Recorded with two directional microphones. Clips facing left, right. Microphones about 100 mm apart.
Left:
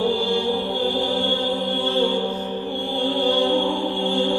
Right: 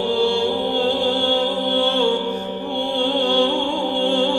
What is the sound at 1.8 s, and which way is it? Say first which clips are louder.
Music: right 3 dB; 70° right (ahead or behind).